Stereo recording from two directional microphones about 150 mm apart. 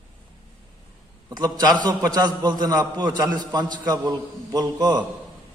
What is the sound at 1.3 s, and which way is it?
A man's voice, 25° right (ahead or behind).